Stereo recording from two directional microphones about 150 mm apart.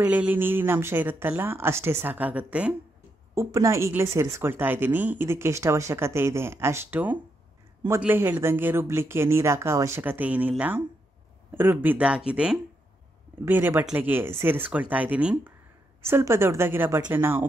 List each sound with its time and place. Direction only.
0.1 s speech: 10° right (ahead or behind)
3.3 s a woman's voice: 20° right (ahead or behind)
11.5 s speech: 15° right (ahead or behind)